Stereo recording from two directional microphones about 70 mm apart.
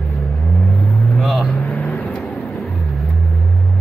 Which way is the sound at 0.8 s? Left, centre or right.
Centre.